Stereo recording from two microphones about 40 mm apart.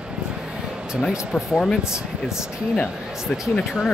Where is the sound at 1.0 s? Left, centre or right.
Centre.